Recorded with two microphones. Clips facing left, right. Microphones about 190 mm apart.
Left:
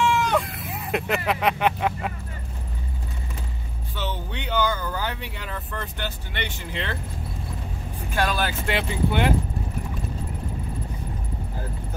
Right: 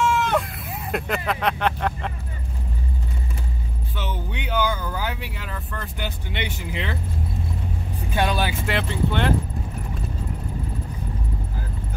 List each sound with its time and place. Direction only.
0.1 s speech: centre (ahead or behind)
4.0 s speech: 10° right (ahead or behind)
5.9 s speech: 10° right (ahead or behind)
8.1 s speech: 20° right (ahead or behind)
8.6 s speech: 5° left (ahead or behind)